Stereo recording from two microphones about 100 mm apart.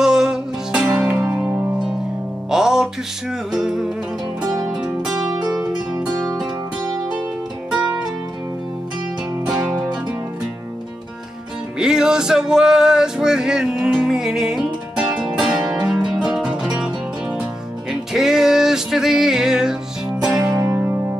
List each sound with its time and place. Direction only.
0.0 s music: 5° right (ahead or behind)
5.3 s music: 40° right (ahead or behind)
11.8 s music: 5° right (ahead or behind)
20.5 s music: 20° right (ahead or behind)